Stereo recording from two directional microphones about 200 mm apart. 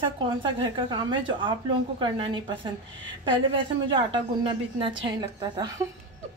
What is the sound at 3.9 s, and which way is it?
Speech, 25° right (ahead or behind).